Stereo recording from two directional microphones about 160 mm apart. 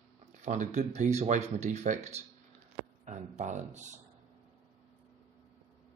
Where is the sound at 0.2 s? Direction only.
50° right (ahead or behind).